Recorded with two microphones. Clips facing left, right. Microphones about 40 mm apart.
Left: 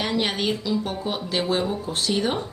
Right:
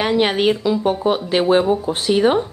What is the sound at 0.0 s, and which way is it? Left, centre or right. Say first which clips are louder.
A woman's voice: right 8 dB; right.